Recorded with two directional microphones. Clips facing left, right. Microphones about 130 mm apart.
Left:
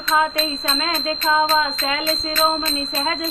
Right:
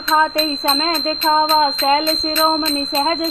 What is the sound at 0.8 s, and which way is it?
A woman's voice, 35° right (ahead or behind).